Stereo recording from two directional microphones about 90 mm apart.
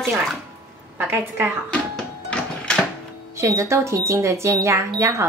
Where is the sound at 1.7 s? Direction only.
10° left (ahead or behind).